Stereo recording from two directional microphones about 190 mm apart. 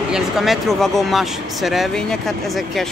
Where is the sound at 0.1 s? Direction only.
Centre (ahead or behind).